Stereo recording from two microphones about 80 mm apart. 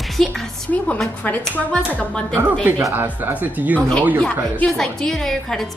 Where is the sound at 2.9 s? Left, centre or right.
Right.